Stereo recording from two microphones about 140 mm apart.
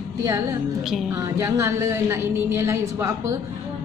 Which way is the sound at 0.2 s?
25° right (ahead or behind).